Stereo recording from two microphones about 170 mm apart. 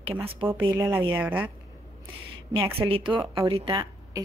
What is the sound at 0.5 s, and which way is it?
Speech, 10° right (ahead or behind).